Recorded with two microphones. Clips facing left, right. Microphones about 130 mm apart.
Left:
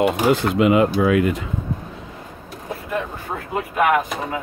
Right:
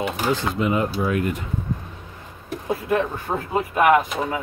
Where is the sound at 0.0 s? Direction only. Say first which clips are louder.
Left 6 dB; 65° left (ahead or behind); by 1.4 s 90° left.